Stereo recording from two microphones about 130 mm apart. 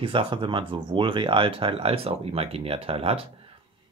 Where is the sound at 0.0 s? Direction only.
45° right (ahead or behind).